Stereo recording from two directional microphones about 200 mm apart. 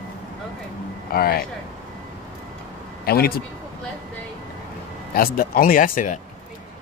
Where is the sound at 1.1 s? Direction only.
50° left (ahead or behind).